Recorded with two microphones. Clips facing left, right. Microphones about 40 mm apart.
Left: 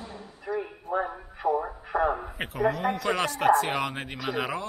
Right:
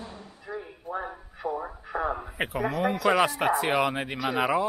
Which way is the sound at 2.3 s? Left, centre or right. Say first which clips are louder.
Left 1 dB; centre.